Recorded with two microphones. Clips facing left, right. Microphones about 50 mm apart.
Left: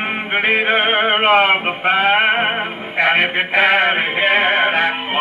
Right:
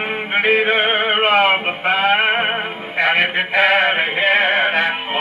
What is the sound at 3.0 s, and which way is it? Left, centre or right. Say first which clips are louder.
Music: left 1 dB; centre.